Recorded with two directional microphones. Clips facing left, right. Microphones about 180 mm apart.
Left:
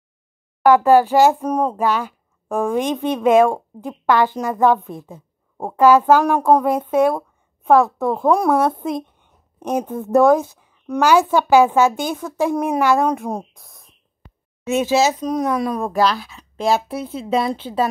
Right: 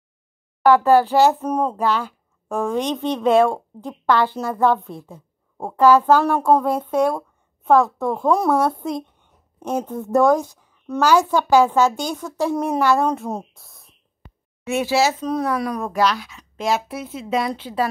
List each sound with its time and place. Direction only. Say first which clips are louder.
0.7 s speech: left 2 dB; 15° left (ahead or behind)